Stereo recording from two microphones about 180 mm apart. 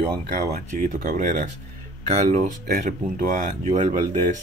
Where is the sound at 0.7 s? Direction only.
45° right (ahead or behind).